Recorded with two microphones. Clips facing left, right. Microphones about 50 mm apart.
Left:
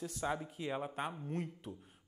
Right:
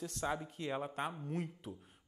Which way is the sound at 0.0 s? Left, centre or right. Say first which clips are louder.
Even; centre.